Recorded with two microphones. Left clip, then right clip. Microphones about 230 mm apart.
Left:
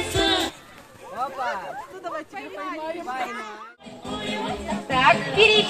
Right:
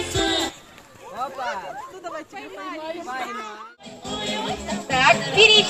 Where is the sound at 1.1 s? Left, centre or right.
Centre.